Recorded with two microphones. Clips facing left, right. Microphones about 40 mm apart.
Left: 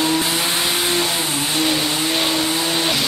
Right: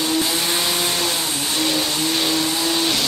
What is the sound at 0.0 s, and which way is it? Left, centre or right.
Vehicle, centre.